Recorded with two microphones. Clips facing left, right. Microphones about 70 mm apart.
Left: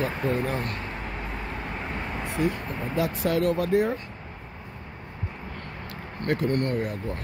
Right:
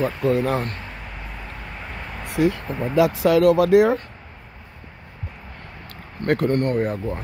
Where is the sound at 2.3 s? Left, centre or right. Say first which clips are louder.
Right 7 dB; right.